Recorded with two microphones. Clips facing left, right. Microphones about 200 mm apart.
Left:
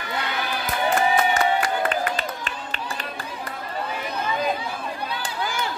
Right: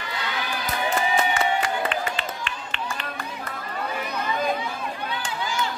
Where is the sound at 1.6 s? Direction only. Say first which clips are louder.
Left 2 dB; 40° left (ahead or behind).